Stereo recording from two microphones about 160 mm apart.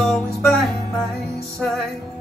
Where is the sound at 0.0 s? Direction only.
Centre (ahead or behind).